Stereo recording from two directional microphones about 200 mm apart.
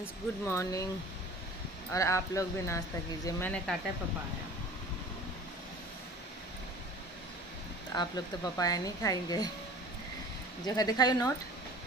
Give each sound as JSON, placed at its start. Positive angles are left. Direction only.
{"t": 0.0, "sound": "speech", "side_deg": 15}
{"t": 1.9, "sound": "speech", "side_deg": 15}
{"t": 7.9, "sound": "a woman's voice", "side_deg": 20}
{"t": 10.6, "sound": "a woman's voice", "side_deg": 20}